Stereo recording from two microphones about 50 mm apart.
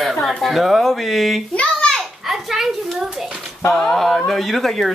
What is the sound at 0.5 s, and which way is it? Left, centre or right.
Speech, centre.